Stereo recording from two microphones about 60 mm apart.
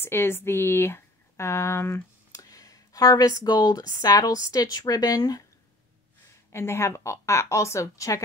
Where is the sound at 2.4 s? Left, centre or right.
Left.